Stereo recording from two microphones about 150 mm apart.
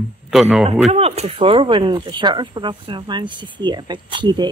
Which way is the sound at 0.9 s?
45° right (ahead or behind).